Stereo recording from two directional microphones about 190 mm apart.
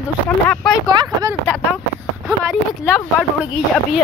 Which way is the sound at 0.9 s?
20° right (ahead or behind).